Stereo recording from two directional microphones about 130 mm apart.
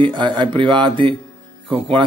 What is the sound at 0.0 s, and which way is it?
Speech, 35° right (ahead or behind).